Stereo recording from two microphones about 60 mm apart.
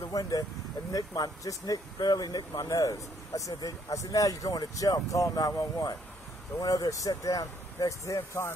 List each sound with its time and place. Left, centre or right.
0.0 s speech: left